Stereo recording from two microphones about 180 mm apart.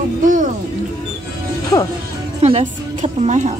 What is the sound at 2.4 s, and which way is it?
Music, 35° right (ahead or behind).